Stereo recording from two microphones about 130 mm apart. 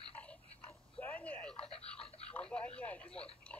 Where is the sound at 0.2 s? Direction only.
10° left (ahead or behind).